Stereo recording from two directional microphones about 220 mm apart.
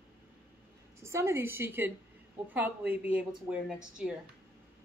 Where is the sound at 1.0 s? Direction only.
10° right (ahead or behind).